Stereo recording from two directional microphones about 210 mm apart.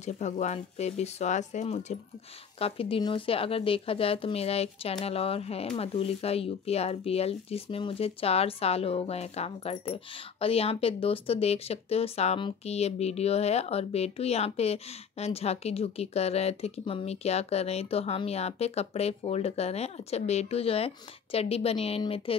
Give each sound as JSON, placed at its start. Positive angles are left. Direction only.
{"t": 0.0, "sound": "speech", "side_deg": 35}